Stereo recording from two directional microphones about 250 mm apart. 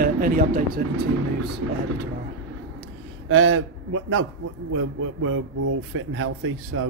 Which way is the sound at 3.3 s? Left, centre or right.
Right.